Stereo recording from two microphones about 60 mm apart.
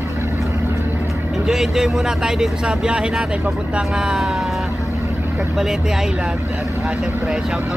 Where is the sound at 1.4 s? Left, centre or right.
Centre.